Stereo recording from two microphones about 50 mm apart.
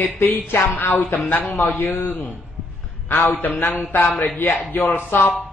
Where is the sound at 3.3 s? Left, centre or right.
Left.